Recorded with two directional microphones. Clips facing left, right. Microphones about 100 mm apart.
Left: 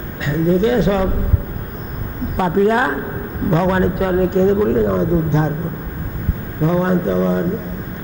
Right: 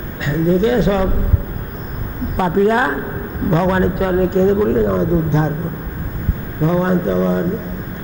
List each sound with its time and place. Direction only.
0.7 s a man's voice: 20° right (ahead or behind)
2.3 s a man's voice: 25° right (ahead or behind)
6.6 s a man's voice: 25° right (ahead or behind)